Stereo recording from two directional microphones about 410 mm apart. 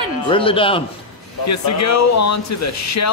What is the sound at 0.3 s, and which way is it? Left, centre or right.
Speech, centre.